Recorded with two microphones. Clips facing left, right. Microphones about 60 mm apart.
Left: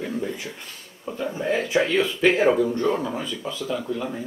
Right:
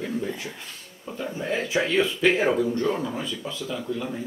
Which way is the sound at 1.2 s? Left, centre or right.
Centre.